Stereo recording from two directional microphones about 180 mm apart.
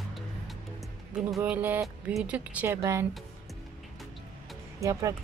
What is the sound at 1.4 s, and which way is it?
Speech, 10° right (ahead or behind).